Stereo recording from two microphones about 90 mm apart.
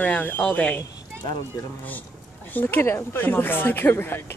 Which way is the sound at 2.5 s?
25° left (ahead or behind).